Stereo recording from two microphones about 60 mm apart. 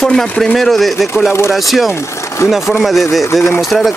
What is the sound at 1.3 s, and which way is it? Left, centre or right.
Speech, left.